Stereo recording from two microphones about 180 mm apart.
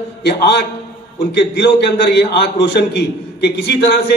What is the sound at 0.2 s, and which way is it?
A man's voice, 65° left (ahead or behind).